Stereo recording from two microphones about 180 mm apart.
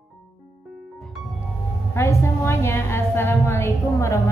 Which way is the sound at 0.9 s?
Centre (ahead or behind).